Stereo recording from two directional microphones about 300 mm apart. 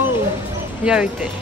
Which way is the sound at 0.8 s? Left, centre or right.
Centre.